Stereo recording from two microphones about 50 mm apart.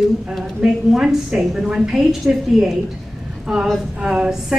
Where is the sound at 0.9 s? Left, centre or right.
Centre.